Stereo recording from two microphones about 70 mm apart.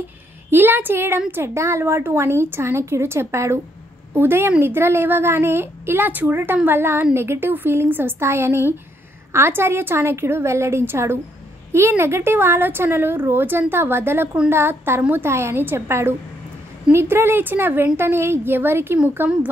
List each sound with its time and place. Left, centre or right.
0.5 s a woman's voice: right
4.1 s a woman's voice: right